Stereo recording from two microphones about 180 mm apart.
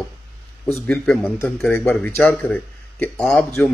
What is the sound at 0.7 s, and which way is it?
Speech, 15° left (ahead or behind).